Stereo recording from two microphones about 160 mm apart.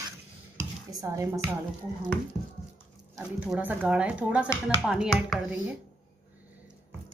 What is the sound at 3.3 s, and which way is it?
Speech, 10° right (ahead or behind).